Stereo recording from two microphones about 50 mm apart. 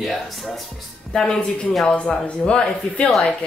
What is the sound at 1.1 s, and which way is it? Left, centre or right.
Speech, centre.